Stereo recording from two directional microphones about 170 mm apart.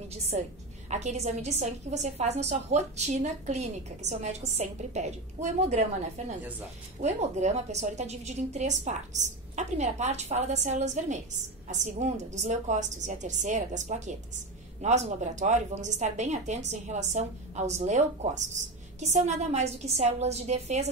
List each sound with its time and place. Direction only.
0.8 s a woman's voice: 40° right (ahead or behind)